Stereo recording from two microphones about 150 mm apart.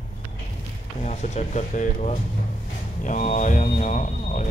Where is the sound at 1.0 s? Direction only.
50° left (ahead or behind).